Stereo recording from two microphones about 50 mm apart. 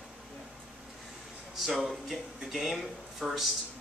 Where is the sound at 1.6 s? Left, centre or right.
Centre.